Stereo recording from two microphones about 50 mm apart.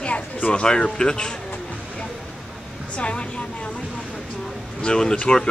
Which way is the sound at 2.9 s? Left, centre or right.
Left.